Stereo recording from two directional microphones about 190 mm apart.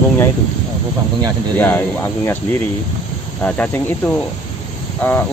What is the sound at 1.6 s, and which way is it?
Speech, 10° left (ahead or behind).